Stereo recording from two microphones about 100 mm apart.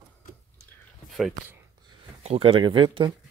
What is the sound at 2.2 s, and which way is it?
Speech, 70° right (ahead or behind).